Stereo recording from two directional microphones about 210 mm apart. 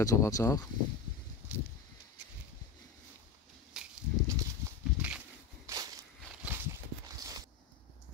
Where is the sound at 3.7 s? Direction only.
5° right (ahead or behind).